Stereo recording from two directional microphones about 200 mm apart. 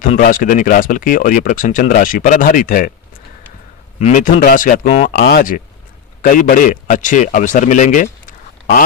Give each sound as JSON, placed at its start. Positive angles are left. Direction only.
{"t": 0.0, "sound": "speech", "side_deg": 45}
{"t": 4.0, "sound": "speech", "side_deg": 40}
{"t": 5.1, "sound": "speech", "side_deg": 60}
{"t": 6.2, "sound": "a man's voice", "side_deg": 45}